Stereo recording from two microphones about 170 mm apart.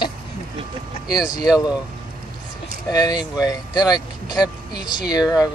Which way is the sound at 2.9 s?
25° left (ahead or behind).